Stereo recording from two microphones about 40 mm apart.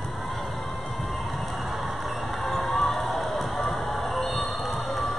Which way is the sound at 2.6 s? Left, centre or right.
Centre.